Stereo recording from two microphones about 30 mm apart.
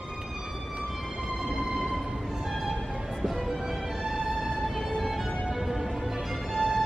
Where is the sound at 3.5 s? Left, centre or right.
Centre.